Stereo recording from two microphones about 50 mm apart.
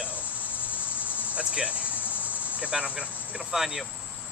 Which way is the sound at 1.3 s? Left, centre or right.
Right.